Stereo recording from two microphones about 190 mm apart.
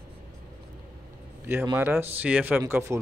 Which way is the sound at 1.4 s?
10° right (ahead or behind).